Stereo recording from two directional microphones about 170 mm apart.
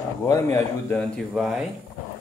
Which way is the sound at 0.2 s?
15° left (ahead or behind).